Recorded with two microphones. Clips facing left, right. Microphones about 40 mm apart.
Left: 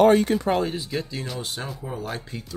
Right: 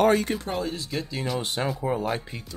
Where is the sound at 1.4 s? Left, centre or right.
Right.